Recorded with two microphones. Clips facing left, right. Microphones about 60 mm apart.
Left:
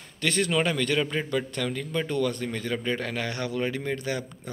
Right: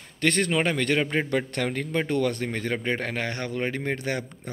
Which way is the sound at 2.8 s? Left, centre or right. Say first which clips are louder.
Right 1 dB; right.